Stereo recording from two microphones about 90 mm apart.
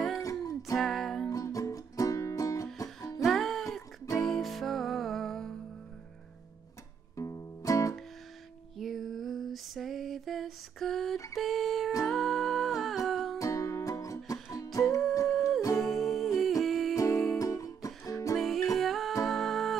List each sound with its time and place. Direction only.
0.2 s music: 40° left (ahead or behind)
0.7 s music: centre (ahead or behind)
1.3 s music: 40° left (ahead or behind)
3.3 s music: 5° left (ahead or behind)
7.2 s music: 35° left (ahead or behind)
8.7 s lullaby: centre (ahead or behind)
11.3 s a sound: centre (ahead or behind)
12.0 s humming: centre (ahead or behind)
13.4 s music: 35° left (ahead or behind)
15.2 s music: centre (ahead or behind)
16.9 s music: 40° left (ahead or behind)
18.3 s music: centre (ahead or behind)